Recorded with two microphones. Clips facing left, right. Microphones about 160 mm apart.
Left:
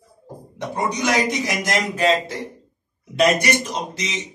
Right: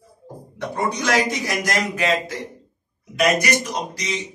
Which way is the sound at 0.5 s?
20° left (ahead or behind).